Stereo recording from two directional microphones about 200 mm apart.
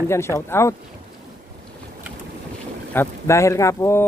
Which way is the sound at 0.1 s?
15° left (ahead or behind).